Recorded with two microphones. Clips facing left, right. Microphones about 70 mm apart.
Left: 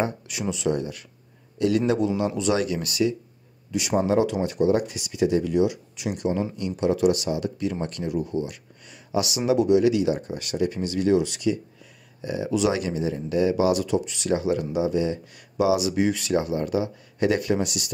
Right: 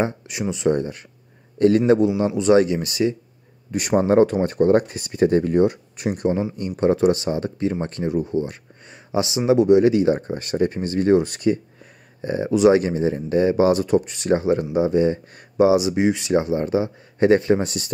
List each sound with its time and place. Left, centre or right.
0.0 s speech: right
2.0 s speech: right